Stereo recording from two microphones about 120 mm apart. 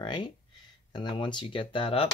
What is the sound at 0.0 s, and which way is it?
Speech, 40° left (ahead or behind).